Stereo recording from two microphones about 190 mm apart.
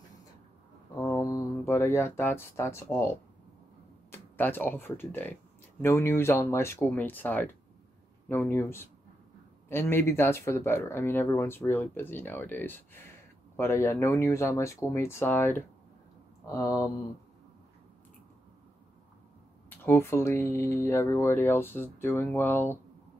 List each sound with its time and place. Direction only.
0.9 s speech: 20° left (ahead or behind)
4.1 s speech: 10° left (ahead or behind)
19.7 s speech: 10° left (ahead or behind)